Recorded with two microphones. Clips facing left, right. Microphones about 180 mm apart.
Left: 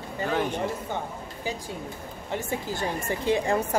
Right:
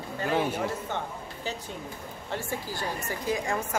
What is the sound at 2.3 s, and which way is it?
Speech, 20° left (ahead or behind).